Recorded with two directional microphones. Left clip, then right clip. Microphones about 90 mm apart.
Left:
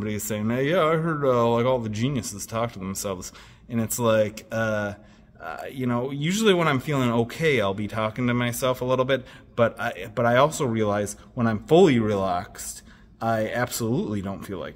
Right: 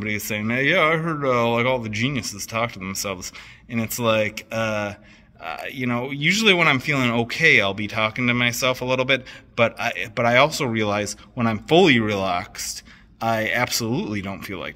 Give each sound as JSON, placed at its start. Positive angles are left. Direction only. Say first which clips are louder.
{"t": 0.0, "sound": "speech", "louder": "right 4 dB", "side_deg": 75}